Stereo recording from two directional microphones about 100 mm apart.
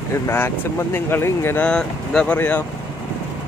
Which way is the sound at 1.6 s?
10° left (ahead or behind).